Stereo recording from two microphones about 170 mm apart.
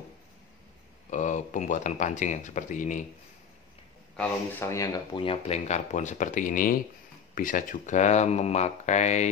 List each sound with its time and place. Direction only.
1.1 s speech: 45° left (ahead or behind)
4.2 s speech: 10° left (ahead or behind); by 9.3 s 45° left (ahead or behind)